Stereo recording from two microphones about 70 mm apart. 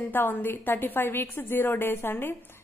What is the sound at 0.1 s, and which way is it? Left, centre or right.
A woman's voice, left.